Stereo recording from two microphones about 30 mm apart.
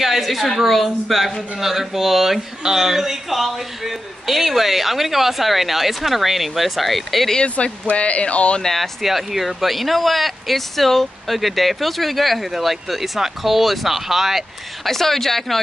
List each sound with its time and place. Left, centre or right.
0.0 s a woman's voice: centre
7.4 s speech: left
8.6 s speech: centre
9.0 s speech: centre
14.9 s speech: centre